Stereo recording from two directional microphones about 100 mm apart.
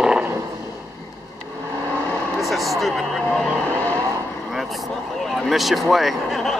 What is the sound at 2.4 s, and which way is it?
Vehicle, centre (ahead or behind).